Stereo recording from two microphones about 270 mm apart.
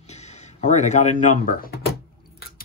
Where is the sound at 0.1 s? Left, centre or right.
Left.